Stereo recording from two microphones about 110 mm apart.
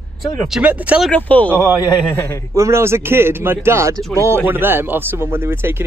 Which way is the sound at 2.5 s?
25° right (ahead or behind).